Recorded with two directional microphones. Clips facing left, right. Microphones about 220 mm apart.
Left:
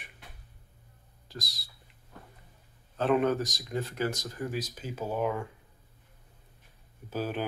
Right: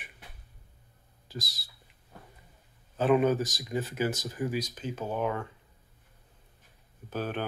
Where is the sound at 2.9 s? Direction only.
5° right (ahead or behind).